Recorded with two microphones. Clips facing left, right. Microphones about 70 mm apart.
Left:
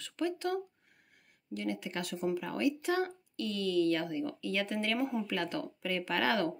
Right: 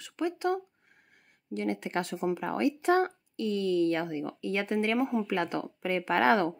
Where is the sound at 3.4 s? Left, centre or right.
Right.